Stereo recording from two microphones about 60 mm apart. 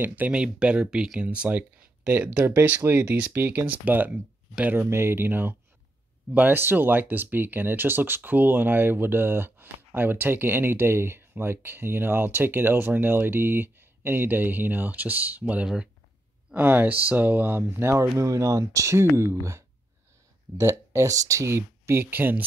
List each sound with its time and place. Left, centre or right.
0.0 s speech: right
0.3 s speech: centre
2.0 s speech: right
4.7 s speech: right
15.6 s speech: centre
16.5 s speech: right
20.5 s speech: right